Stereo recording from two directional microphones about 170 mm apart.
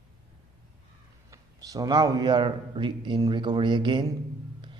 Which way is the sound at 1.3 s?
20° right (ahead or behind).